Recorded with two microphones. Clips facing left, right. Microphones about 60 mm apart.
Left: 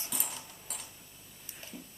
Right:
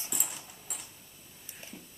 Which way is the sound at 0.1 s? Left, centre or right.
Centre.